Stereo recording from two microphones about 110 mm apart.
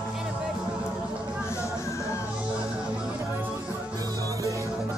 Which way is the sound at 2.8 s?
5° right (ahead or behind).